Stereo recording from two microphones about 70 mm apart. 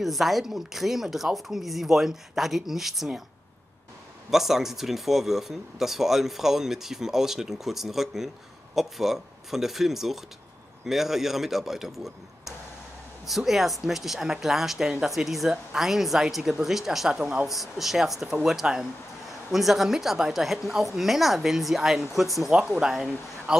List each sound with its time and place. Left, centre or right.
0.0 s speech: centre
4.3 s speech: centre
17.2 s speech: centre
17.5 s speech: centre
22.5 s speech: centre